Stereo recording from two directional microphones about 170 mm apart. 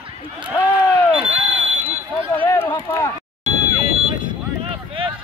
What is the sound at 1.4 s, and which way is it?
Smoke detector, 10° right (ahead or behind).